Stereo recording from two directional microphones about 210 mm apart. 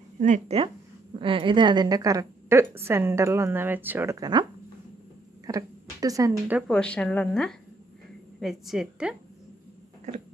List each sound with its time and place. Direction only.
0.2 s a woman's voice: 35° right (ahead or behind)
5.5 s speech: 15° right (ahead or behind)
6.7 s a woman's voice: 5° left (ahead or behind)
10.1 s speech: 35° right (ahead or behind)